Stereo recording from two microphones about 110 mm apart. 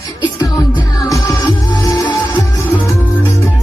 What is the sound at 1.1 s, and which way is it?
Music, 30° left (ahead or behind).